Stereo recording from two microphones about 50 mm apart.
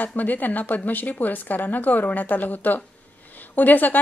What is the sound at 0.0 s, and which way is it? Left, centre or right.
A woman's voice, left.